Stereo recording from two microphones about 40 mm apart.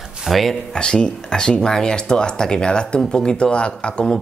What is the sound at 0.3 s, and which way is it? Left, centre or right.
Speech, centre.